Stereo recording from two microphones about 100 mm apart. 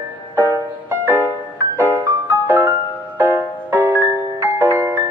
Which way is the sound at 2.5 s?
20° right (ahead or behind).